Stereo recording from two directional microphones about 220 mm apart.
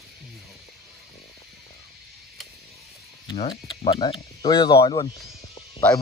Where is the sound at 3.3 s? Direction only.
20° left (ahead or behind).